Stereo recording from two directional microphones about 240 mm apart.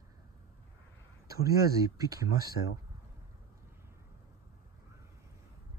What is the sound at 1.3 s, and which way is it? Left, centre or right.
Speech, centre.